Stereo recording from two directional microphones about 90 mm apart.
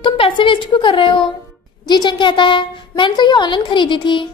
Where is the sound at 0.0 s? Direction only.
70° left (ahead or behind).